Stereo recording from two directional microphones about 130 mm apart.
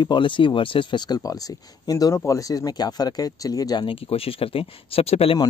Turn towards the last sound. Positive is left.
turn(degrees=50)  # may be behind; listen again after turning